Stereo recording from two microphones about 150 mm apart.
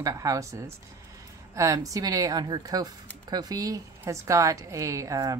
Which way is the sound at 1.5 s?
20° right (ahead or behind).